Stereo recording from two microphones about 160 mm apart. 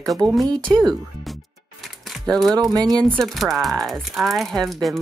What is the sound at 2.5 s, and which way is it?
Speech, 25° right (ahead or behind).